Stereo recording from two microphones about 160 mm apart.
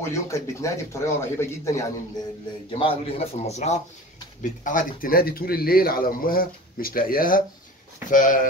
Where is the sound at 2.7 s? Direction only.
35° left (ahead or behind).